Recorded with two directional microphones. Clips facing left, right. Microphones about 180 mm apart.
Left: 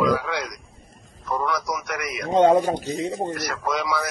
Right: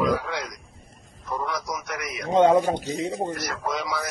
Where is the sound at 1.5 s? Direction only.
70° left (ahead or behind).